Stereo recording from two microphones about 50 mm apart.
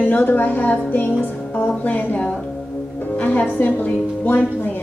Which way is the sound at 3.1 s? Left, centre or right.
Left.